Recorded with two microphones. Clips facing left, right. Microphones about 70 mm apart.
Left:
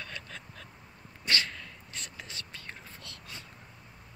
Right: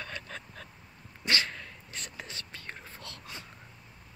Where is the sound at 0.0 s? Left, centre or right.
Right.